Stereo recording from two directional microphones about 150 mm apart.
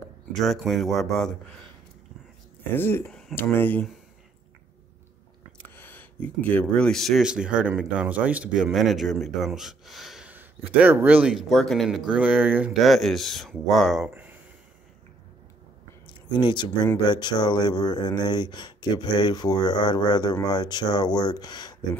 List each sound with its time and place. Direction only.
0.4 s speech: centre (ahead or behind)
2.7 s speech: 15° left (ahead or behind)
3.1 s a sound: centre (ahead or behind)
3.3 s speech: 15° left (ahead or behind)
5.8 s speech: 10° left (ahead or behind)
16.3 s speech: 30° left (ahead or behind)